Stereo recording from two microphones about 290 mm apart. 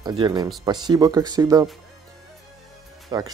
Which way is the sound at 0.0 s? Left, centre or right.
Centre.